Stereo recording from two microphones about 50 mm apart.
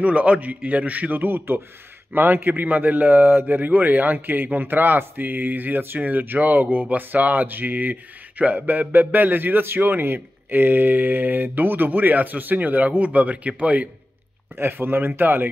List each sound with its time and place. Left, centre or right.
0.0 s speech: right
14.6 s speech: right